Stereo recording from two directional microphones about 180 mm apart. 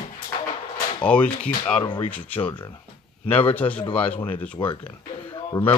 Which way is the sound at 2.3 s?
30° left (ahead or behind).